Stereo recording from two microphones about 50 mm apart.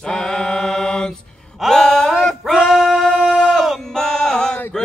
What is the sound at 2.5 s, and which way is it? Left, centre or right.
Singing, centre.